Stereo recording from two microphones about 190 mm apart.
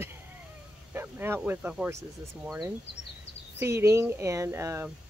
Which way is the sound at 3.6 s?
15° right (ahead or behind).